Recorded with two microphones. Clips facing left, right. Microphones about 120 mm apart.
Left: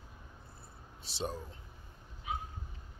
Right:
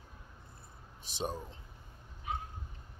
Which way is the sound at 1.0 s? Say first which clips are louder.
Right 1 dB; 15° right (ahead or behind).